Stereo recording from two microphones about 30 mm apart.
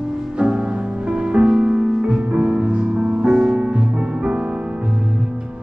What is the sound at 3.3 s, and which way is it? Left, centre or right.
Music, right.